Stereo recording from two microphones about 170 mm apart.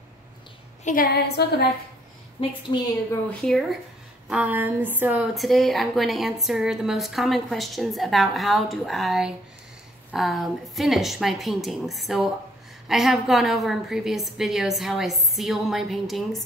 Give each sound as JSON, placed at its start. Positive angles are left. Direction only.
{"t": 0.8, "sound": "a woman's voice", "side_deg": 60}
{"t": 2.4, "sound": "a woman's voice", "side_deg": 30}
{"t": 3.3, "sound": "a woman's voice", "side_deg": 0}
{"t": 4.3, "sound": "speech", "side_deg": -10}
{"t": 5.3, "sound": "a woman's voice", "side_deg": 0}